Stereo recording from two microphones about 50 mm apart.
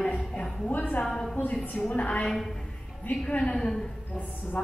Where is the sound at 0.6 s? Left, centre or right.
Left.